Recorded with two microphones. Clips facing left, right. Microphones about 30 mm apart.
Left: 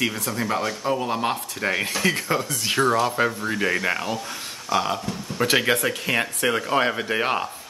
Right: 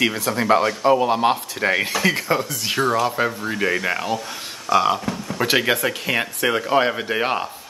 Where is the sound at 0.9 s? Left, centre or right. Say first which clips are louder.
Right 6 dB; right; by 7.4 s centre.